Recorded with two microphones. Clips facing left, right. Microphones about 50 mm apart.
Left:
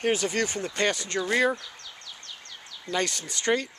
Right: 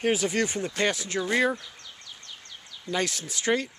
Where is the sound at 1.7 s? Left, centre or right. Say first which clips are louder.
Left 2 dB; left.